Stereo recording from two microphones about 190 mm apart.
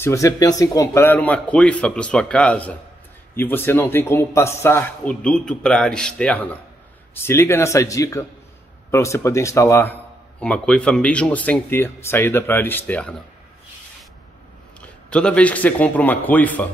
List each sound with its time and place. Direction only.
0.0 s a man's voice: 15° left (ahead or behind)
15.0 s a man's voice: 5° left (ahead or behind)